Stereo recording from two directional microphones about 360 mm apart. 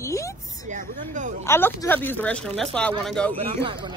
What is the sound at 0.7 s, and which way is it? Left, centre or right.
Speech, right.